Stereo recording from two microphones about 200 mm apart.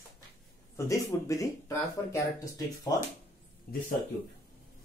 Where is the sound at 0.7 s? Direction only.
15° left (ahead or behind).